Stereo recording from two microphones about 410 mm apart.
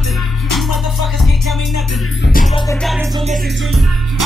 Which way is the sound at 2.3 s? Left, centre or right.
Centre.